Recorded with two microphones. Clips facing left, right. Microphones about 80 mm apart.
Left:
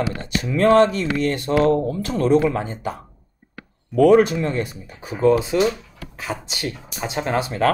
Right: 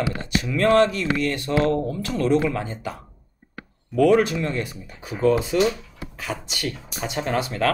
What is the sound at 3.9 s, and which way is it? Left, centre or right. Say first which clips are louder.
Speech: left 4 dB; left.